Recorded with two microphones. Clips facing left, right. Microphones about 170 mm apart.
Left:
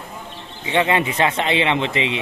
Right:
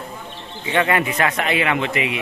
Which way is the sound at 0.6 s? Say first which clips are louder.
Left 1 dB; 20° left (ahead or behind).